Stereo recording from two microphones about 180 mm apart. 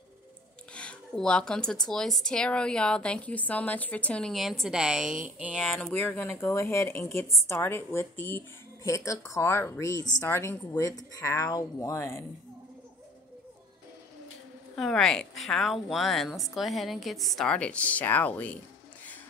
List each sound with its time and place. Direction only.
0.7 s speech: 5° left (ahead or behind)
5.6 s speech: 5° left (ahead or behind)
14.8 s speech: 5° left (ahead or behind)